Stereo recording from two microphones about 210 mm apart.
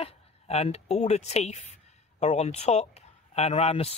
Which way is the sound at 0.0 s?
30° left (ahead or behind).